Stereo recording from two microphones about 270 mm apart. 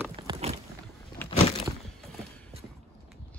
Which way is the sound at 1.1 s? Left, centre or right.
Centre.